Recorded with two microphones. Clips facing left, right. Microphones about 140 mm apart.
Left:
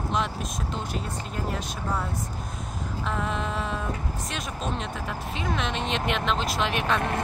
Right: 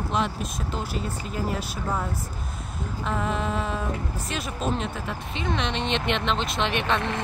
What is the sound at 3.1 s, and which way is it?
Speech, centre (ahead or behind).